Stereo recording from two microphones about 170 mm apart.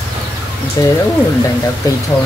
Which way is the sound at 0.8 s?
20° left (ahead or behind).